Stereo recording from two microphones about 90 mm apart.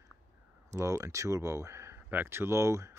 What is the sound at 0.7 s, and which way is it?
Speech, 35° right (ahead or behind).